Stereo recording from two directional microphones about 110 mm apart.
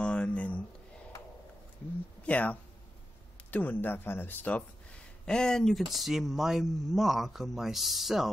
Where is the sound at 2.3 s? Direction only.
15° left (ahead or behind).